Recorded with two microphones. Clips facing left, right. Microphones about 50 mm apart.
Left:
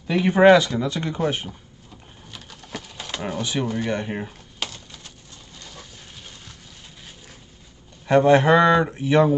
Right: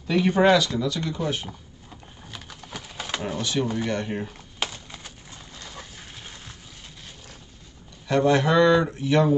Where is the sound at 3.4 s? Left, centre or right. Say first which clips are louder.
Left 1 dB; centre.